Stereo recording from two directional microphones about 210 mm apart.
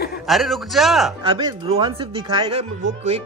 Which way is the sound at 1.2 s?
25° right (ahead or behind).